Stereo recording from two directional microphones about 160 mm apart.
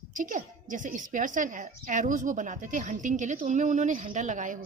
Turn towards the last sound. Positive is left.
turn(degrees=-50)  # may be behind; listen again after turning